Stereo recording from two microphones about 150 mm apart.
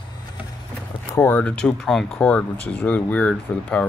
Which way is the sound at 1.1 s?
10° left (ahead or behind).